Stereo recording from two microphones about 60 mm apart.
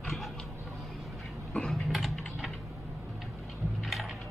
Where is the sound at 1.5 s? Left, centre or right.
Centre.